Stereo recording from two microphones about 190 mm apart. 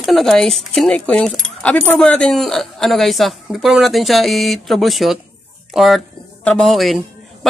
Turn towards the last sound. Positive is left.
turn(degrees=0)  # may be behind; listen again after turning